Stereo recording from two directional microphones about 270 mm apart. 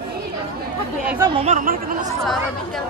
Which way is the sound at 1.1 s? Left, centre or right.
Centre.